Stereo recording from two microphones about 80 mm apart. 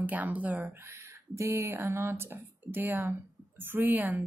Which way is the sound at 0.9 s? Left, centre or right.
Right.